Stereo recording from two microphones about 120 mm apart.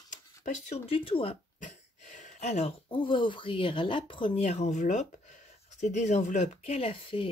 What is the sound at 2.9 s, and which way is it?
A woman's voice, 45° left (ahead or behind).